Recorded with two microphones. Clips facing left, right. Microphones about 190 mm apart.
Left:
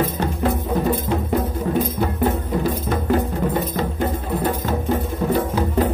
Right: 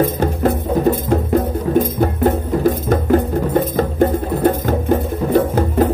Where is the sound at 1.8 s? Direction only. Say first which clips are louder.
Right 6 dB; 50° right (ahead or behind).